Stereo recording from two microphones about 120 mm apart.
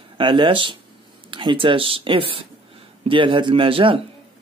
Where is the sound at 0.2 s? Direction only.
45° right (ahead or behind).